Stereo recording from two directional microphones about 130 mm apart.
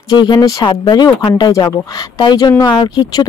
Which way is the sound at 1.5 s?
25° left (ahead or behind).